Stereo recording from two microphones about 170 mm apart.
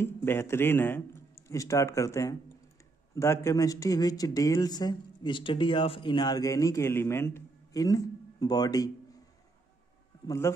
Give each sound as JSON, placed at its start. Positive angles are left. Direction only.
{"t": 0.0, "sound": "speech", "side_deg": 15}
{"t": 10.2, "sound": "a man's voice", "side_deg": 15}